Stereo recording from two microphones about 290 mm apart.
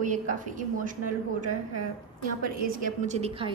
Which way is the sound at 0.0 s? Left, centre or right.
Right.